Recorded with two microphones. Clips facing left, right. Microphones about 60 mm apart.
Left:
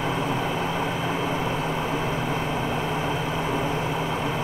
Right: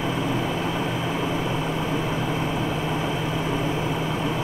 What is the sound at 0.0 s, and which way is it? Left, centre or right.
Vehicle, centre.